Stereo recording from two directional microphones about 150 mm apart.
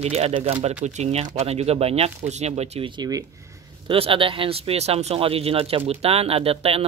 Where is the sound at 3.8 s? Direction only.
40° right (ahead or behind).